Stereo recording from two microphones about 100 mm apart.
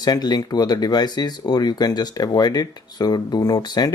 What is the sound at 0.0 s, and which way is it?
Speech, 45° left (ahead or behind).